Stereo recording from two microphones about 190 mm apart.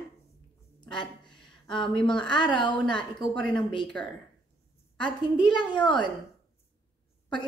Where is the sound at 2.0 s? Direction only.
5° left (ahead or behind).